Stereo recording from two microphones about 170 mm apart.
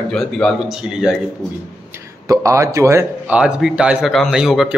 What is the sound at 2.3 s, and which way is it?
Speech, 15° right (ahead or behind).